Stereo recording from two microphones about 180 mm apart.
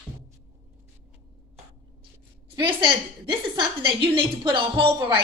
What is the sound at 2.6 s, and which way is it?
A woman's voice, 30° right (ahead or behind).